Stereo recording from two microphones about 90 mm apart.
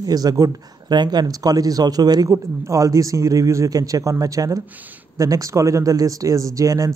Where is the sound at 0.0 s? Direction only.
45° right (ahead or behind).